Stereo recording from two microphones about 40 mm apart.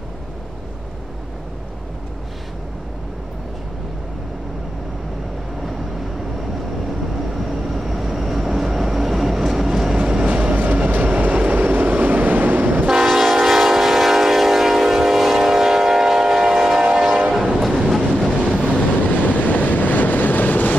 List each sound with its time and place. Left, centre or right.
7.4 s train: centre
9.9 s train: centre
10.2 s train: right
13.0 s train: centre
19.0 s vehicle: left